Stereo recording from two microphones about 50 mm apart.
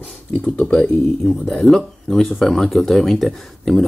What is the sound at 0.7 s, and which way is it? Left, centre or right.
Speech, centre.